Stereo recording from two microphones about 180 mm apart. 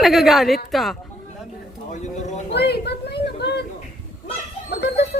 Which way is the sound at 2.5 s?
65° left (ahead or behind).